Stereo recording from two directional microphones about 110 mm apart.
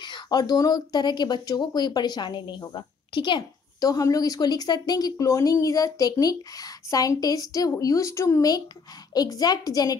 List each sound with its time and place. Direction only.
0.0 s speech: 40° left (ahead or behind)